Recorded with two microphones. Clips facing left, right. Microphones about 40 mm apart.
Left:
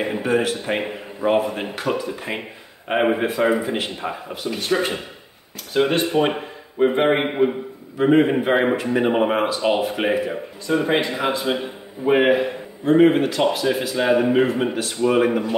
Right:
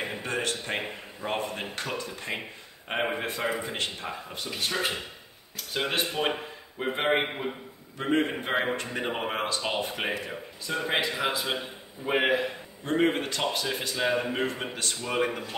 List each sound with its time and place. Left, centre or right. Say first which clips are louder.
0.0 s speech: left 10 dB; centre
10.9 s speech: left 7 dB; centre
13.9 s speech: left 10 dB; centre